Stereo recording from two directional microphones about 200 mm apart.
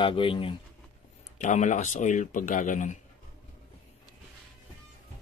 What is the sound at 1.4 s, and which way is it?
Speech, 40° left (ahead or behind).